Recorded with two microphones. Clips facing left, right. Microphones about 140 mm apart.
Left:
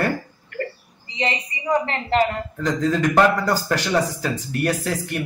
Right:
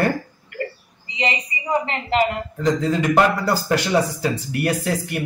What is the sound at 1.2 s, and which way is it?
A man's voice, 15° right (ahead or behind).